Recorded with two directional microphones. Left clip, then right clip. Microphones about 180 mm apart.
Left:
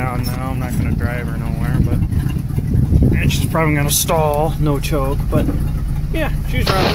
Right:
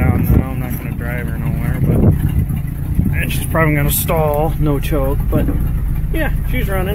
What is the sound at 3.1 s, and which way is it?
Speech, centre (ahead or behind).